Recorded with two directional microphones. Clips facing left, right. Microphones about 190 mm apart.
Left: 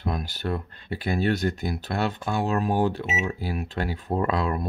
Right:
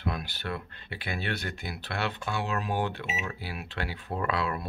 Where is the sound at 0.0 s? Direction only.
40° left (ahead or behind).